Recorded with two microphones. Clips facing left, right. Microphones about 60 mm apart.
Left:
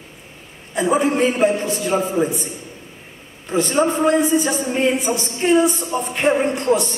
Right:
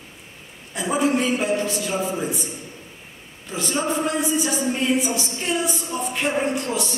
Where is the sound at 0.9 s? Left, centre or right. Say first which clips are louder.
Left 2 dB; left.